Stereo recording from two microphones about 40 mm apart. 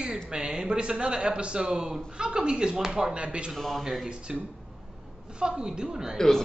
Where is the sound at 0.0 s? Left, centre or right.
Right.